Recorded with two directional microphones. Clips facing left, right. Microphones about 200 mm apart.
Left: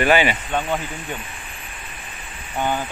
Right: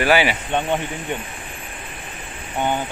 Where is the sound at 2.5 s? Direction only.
20° right (ahead or behind).